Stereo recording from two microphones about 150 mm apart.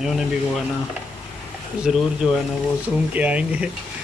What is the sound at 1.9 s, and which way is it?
Speech, centre (ahead or behind).